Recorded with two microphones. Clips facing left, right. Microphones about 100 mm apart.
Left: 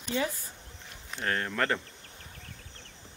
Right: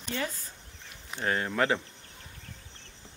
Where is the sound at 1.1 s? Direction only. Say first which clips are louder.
Right 2 dB; 5° right (ahead or behind).